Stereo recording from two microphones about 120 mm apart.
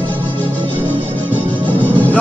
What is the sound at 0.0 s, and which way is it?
Music, 45° right (ahead or behind).